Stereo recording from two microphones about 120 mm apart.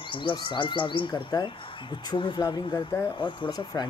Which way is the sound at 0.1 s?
45° left (ahead or behind).